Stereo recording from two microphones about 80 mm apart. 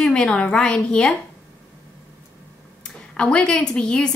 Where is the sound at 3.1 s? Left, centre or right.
Centre.